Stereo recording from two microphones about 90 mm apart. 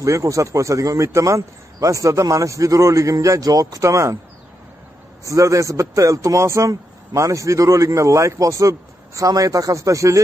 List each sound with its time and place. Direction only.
0.0 s a man's voice: 35° right (ahead or behind)
5.2 s a man's voice: 35° right (ahead or behind)